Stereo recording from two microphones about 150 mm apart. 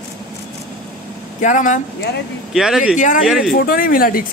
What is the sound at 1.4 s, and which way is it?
Speech, 55° left (ahead or behind).